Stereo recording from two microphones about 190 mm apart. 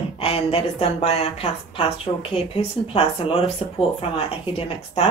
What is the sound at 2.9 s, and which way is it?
Speech, 30° left (ahead or behind).